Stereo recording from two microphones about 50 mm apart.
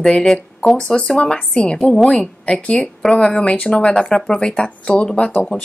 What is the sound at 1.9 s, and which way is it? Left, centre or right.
Speech, centre.